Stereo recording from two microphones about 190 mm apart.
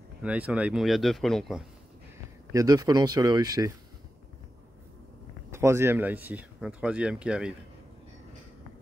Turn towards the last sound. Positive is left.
turn(degrees=-5)  # may be behind; listen again after turning